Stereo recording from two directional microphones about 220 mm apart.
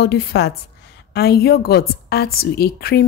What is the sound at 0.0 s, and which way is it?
A woman's voice, 45° left (ahead or behind).